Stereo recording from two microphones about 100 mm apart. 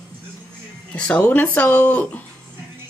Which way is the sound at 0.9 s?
10° left (ahead or behind).